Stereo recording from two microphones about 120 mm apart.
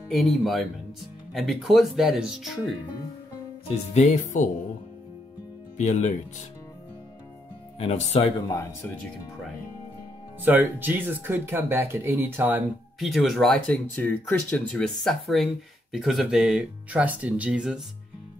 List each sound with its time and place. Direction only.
0.4 s speech: centre (ahead or behind)
3.6 s speech: 70° left (ahead or behind)
5.8 s speech: 70° left (ahead or behind)
7.8 s speech: 55° left (ahead or behind)
10.4 s speech: 15° right (ahead or behind)
13.0 s speech: centre (ahead or behind)
13.8 s speech: 15° left (ahead or behind); by 17.8 s 5° right (ahead or behind)